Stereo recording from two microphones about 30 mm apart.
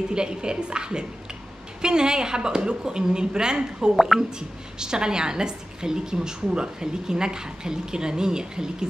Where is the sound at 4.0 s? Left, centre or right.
Centre.